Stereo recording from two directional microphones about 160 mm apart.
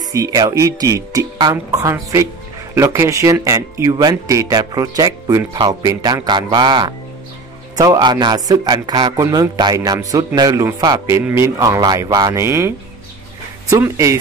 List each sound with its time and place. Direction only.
0.1 s speech: 20° right (ahead or behind)